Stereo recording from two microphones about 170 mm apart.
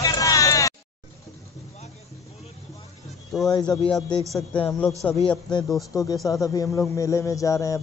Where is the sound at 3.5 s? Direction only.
20° left (ahead or behind).